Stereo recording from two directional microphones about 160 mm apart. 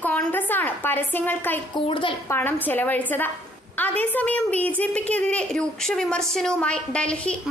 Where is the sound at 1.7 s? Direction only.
30° left (ahead or behind).